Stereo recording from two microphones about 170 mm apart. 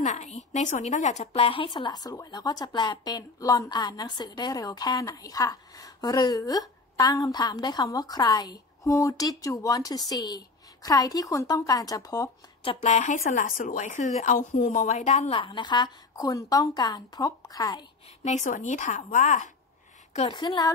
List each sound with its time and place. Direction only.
0.0 s speech: 45° left (ahead or behind); by 12.3 s 20° left (ahead or behind)
12.6 s a woman's voice: 40° left (ahead or behind); by 17.8 s 20° left (ahead or behind)
18.2 s a woman's voice: 45° left (ahead or behind)
20.2 s speech: 30° left (ahead or behind)